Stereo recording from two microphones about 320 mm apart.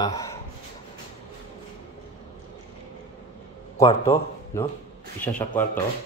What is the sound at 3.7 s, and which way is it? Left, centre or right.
Speech, centre.